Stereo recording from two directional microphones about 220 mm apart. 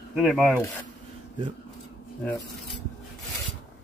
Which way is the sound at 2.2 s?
15° left (ahead or behind).